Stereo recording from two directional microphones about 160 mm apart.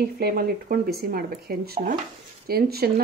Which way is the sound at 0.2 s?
70° right (ahead or behind).